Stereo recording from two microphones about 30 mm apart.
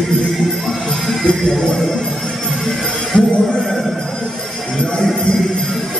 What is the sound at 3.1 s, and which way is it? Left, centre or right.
Music, left.